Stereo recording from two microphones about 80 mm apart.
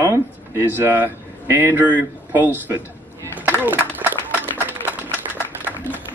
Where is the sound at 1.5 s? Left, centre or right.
Right.